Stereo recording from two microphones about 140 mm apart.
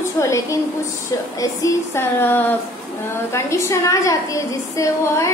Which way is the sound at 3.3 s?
20° left (ahead or behind).